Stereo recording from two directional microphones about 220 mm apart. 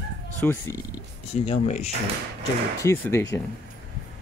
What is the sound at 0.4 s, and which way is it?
Speech, 10° left (ahead or behind).